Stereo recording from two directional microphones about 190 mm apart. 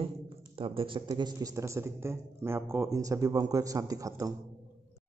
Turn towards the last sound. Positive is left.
turn(degrees=-15)  # may be behind; listen again after turning